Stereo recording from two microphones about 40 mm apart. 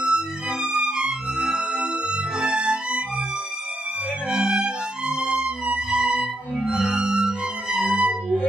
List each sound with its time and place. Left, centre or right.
0.0 s music: right
4.3 s music: right